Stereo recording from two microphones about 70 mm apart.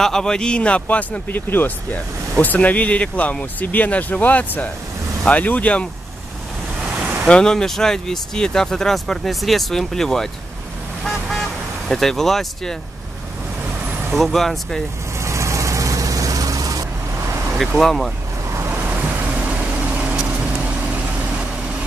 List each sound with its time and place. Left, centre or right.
0.0 s speech: centre
7.0 s waves: right
7.2 s speech: centre
11.1 s vehicle: centre
11.9 s speech: centre
14.1 s speech: centre
15.1 s vehicle: right
17.6 s speech: centre
18.7 s vehicle: right